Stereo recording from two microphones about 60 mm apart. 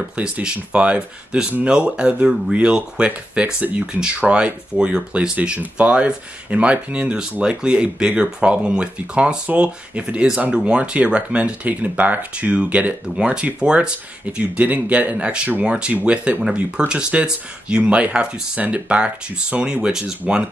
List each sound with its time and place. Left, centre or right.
0.1 s speech: centre